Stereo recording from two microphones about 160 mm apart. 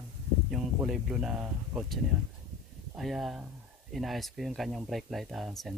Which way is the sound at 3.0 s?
Centre (ahead or behind).